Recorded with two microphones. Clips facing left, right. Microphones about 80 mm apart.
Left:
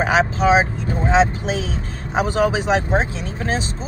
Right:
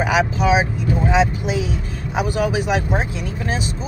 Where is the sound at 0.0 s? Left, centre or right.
Left.